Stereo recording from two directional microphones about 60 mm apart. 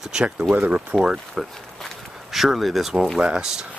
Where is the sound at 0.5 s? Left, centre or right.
Right.